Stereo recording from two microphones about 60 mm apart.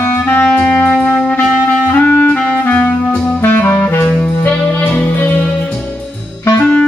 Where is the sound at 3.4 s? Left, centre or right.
Left.